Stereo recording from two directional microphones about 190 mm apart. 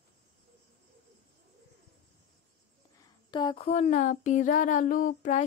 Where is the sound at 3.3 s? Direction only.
25° left (ahead or behind).